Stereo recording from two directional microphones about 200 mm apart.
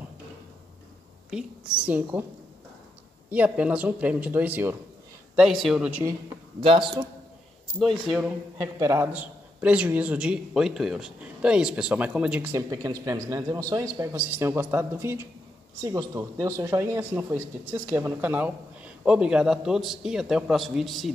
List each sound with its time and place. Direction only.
1.3 s a man's voice: 5° right (ahead or behind)
3.3 s a man's voice: 5° right (ahead or behind)
6.6 s a man's voice: 25° right (ahead or behind)
7.8 s a man's voice: centre (ahead or behind)
8.5 s a man's voice: 15° right (ahead or behind)